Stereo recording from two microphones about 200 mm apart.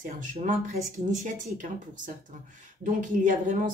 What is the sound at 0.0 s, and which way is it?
Speech, 40° right (ahead or behind).